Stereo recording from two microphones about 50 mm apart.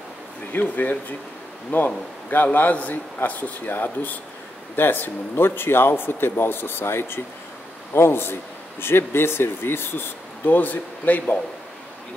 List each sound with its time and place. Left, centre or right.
0.5 s speech: left